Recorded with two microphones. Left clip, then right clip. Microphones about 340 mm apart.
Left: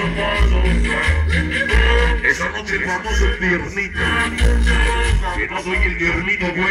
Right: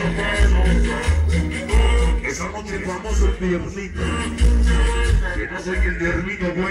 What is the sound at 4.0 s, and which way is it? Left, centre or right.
Music, centre.